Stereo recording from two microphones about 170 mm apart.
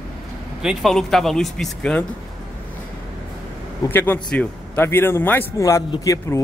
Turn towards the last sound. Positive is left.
turn(degrees=20)  # may be behind; listen again after turning